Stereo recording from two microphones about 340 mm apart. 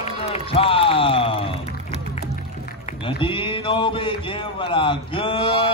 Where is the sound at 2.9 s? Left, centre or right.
Centre.